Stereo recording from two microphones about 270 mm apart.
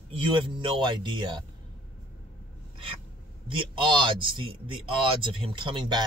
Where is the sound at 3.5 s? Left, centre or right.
Centre.